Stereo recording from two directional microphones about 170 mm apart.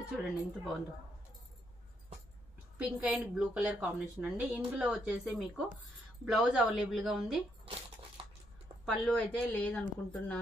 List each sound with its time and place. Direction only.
0.1 s a woman's voice: 5° right (ahead or behind)
2.8 s a woman's voice: 10° right (ahead or behind)
8.2 s a sound: 35° right (ahead or behind)
8.8 s a man's voice: centre (ahead or behind)